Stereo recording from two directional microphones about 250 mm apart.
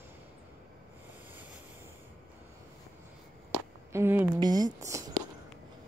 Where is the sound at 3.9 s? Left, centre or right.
Centre.